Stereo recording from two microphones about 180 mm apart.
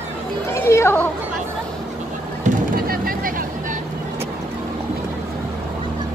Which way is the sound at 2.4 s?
55° right (ahead or behind).